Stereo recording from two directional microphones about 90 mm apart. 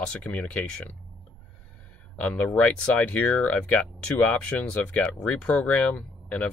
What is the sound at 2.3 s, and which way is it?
Speech, 15° left (ahead or behind).